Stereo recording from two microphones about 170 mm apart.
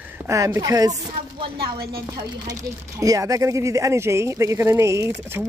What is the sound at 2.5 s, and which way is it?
Speech, 20° right (ahead or behind).